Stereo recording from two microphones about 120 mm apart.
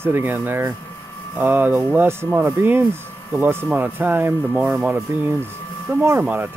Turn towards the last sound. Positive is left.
turn(degrees=-15)  # may be behind; listen again after turning